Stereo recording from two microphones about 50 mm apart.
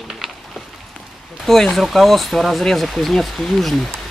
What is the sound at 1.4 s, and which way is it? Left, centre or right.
Speech, centre.